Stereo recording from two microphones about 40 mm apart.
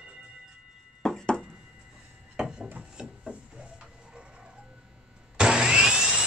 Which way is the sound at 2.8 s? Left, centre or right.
Right.